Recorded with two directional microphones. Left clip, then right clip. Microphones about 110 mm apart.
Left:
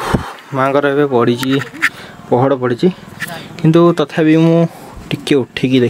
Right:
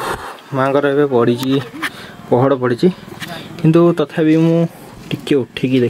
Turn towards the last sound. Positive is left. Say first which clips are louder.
# left 2 dB
turn(degrees=20)  # may be behind; listen again after turning